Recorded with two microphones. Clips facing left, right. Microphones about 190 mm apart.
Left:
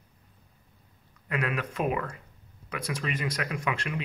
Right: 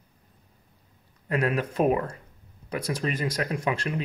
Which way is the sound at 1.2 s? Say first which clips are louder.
Right 5 dB; 35° right (ahead or behind).